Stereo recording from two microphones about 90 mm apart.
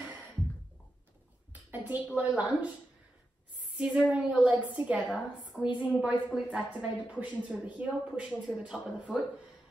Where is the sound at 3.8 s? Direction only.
10° right (ahead or behind).